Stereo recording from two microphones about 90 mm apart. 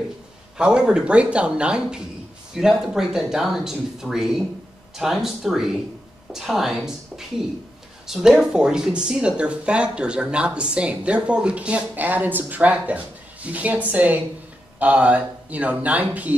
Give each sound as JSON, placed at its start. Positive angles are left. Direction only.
{"t": 0.6, "sound": "speech", "side_deg": -10}